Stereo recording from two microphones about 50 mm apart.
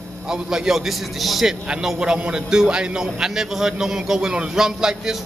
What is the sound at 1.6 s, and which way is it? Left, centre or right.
A man's voice, centre.